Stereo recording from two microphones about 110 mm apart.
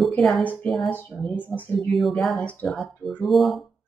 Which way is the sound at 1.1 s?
25° left (ahead or behind).